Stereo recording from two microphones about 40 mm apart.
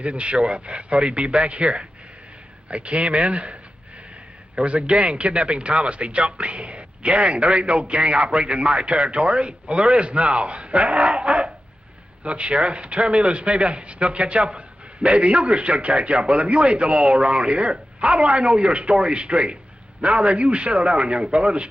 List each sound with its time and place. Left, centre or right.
0.0 s a man's voice: right
4.6 s a man's voice: right